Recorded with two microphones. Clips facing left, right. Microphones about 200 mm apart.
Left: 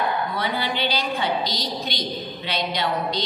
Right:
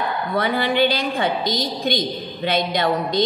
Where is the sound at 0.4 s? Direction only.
55° right (ahead or behind).